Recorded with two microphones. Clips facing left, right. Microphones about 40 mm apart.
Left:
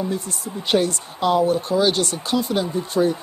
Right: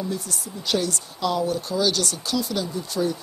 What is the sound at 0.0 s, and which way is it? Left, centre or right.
Speech, left.